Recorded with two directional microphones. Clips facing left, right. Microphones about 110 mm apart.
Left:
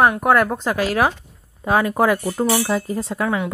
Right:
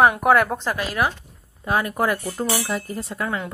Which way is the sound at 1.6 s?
25° left (ahead or behind).